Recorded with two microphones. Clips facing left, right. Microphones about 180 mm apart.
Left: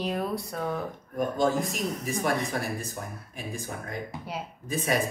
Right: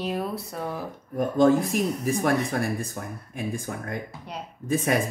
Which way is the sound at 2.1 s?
55° right (ahead or behind).